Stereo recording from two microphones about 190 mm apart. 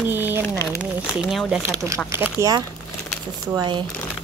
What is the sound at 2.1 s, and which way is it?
Speech, 10° right (ahead or behind).